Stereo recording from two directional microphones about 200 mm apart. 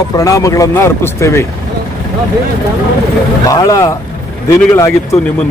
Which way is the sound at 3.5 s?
15° left (ahead or behind).